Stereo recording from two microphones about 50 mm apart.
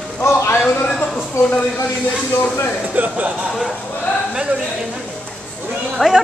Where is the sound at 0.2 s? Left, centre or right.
Left.